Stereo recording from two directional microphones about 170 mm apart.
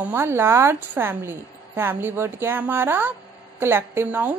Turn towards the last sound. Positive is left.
turn(degrees=-10)  # may be behind; listen again after turning